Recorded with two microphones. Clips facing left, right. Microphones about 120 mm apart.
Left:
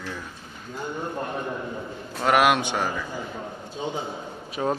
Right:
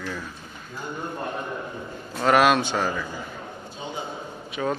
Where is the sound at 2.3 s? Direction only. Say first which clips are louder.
Right 1 dB; 15° left (ahead or behind).